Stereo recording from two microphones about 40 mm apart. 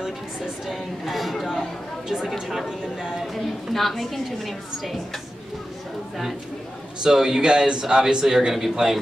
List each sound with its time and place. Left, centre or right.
0.7 s a woman's voice: centre
2.0 s speech: centre
3.7 s a woman's voice: centre
7.0 s a man's voice: centre